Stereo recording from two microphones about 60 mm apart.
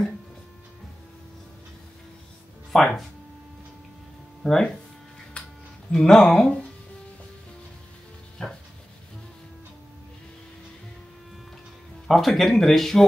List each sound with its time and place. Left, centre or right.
2.7 s speech: centre
4.4 s speech: centre
5.4 s music: centre
5.9 s speech: centre
8.4 s rub: centre
12.1 s speech: centre